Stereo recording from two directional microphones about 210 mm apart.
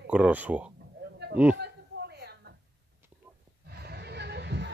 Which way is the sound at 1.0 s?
55° right (ahead or behind).